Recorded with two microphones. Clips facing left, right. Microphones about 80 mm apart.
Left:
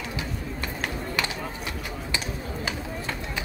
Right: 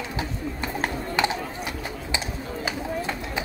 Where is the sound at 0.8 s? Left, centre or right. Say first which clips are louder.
Right 6 dB; right.